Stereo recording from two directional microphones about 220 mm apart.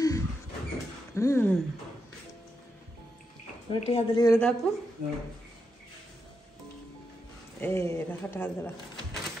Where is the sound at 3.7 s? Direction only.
25° left (ahead or behind).